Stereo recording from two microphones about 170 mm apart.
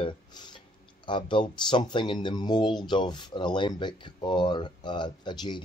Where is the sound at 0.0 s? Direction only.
25° left (ahead or behind).